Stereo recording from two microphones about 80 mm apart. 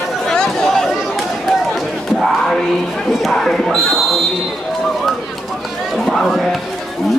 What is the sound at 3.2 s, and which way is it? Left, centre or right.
Basketball bounce, centre.